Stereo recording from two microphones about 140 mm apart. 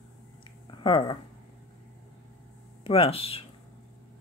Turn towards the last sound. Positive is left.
turn(degrees=45)  # may be behind; listen again after turning